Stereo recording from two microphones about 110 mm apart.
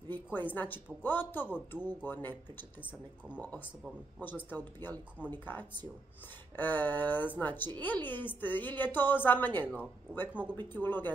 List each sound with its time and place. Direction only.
0.1 s a woman's voice: 15° left (ahead or behind)
3.3 s a woman's voice: 15° left (ahead or behind)